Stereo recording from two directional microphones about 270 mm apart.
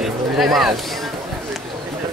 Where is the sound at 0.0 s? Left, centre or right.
Centre.